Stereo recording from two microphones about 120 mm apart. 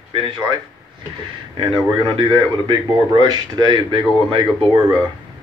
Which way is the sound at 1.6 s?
40° right (ahead or behind).